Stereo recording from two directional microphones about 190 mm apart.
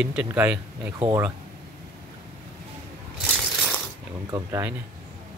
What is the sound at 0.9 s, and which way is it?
Speech, 20° right (ahead or behind).